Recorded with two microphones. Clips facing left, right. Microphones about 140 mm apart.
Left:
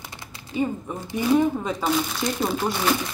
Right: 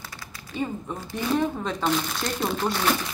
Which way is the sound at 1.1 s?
10° left (ahead or behind).